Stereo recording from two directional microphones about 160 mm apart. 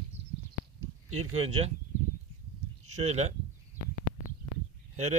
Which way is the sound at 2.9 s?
45° right (ahead or behind).